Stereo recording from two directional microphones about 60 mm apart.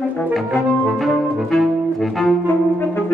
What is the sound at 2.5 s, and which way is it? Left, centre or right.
Brass instrument, left.